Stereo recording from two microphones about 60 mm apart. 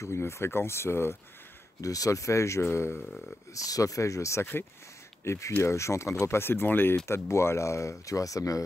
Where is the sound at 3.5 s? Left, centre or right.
Left.